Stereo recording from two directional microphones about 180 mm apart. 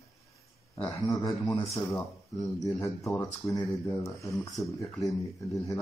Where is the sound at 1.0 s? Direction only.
20° left (ahead or behind).